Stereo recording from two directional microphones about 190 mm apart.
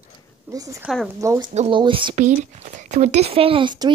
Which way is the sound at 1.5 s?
35° right (ahead or behind).